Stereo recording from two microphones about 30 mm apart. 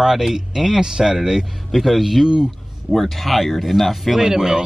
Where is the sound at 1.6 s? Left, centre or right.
Centre.